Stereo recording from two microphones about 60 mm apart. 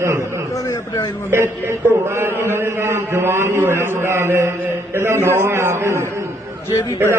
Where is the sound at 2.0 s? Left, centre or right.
Right.